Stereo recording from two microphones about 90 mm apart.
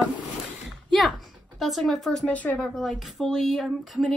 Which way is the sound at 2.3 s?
15° left (ahead or behind).